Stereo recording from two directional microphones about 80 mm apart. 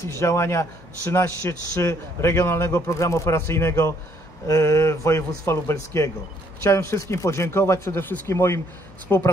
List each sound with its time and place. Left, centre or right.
0.2 s a man's voice: left